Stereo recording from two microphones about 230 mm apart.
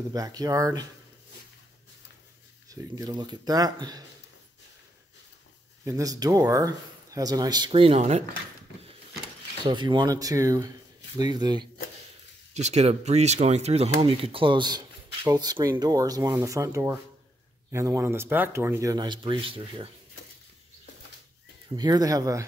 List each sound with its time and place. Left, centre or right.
0.1 s speech: centre
2.7 s speech: centre
5.9 s speech: centre
9.7 s speech: centre
12.5 s speech: right
21.6 s speech: centre